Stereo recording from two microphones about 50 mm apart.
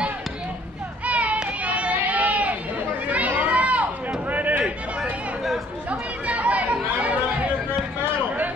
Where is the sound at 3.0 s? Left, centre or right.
Right.